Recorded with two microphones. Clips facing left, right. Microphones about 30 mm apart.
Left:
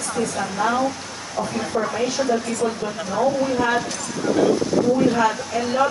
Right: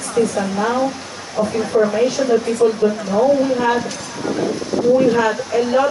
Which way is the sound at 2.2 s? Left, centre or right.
Centre.